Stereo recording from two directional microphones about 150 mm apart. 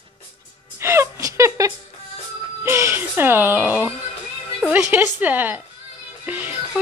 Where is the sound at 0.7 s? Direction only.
20° right (ahead or behind).